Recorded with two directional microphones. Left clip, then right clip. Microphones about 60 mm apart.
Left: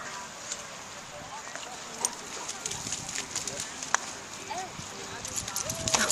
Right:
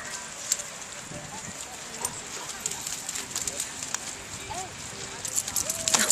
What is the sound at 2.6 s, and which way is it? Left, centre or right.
Clip-clop, left.